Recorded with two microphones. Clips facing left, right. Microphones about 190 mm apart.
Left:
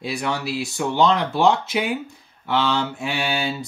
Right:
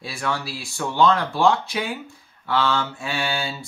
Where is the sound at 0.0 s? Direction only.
20° left (ahead or behind).